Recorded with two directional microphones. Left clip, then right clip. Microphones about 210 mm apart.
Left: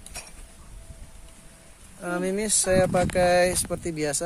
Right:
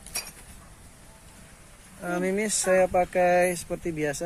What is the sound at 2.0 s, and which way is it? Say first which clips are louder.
Speech: even; 10° left (ahead or behind).